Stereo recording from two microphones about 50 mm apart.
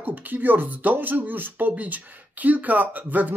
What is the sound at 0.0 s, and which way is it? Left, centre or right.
Speech, right.